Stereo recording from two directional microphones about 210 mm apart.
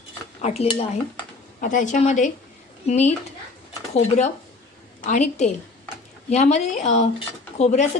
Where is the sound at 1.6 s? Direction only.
35° left (ahead or behind).